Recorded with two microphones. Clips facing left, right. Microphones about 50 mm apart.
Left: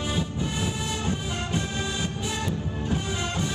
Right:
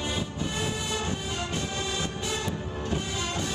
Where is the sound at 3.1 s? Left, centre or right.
Left.